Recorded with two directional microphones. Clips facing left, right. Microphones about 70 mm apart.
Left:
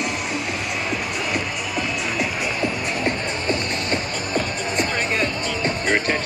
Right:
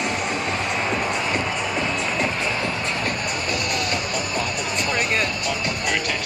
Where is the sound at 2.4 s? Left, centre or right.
Left.